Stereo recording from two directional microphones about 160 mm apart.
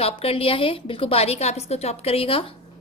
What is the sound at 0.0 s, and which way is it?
A woman's voice, 40° left (ahead or behind).